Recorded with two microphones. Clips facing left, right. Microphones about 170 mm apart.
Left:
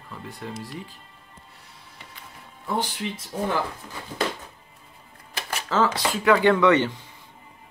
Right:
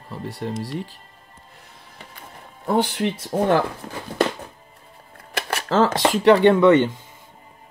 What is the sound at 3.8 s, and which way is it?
Speech, 55° right (ahead or behind).